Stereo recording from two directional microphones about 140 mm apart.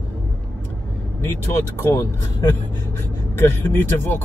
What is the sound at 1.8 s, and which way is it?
A man's voice, 20° left (ahead or behind).